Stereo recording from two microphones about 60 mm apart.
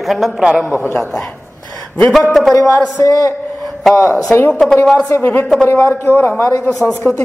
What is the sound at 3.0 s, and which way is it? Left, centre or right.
Speech, left.